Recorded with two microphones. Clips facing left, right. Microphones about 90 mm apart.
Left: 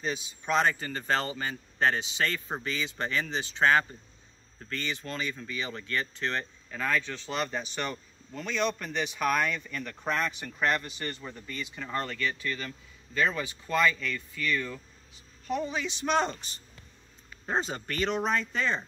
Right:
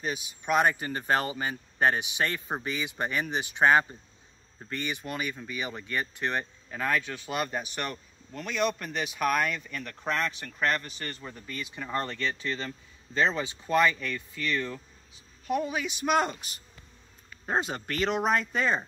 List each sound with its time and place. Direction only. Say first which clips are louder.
0.0 s speech: even; 10° right (ahead or behind)
11.6 s speech: right 2 dB; 15° right (ahead or behind)